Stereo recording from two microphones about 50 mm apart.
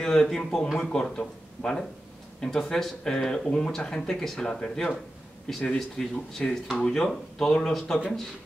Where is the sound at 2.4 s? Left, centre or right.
Centre.